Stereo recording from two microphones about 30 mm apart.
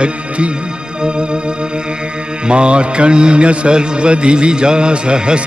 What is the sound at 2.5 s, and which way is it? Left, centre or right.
Music, right.